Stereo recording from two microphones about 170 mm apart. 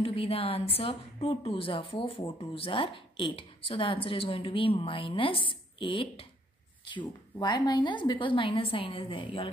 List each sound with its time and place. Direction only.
0.0 s a woman's voice: 35° left (ahead or behind)